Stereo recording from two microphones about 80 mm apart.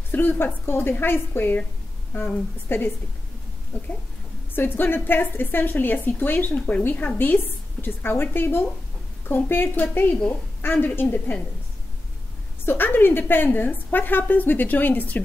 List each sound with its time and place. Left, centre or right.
0.1 s a woman's voice: left
4.6 s a woman's voice: left
12.6 s a woman's voice: left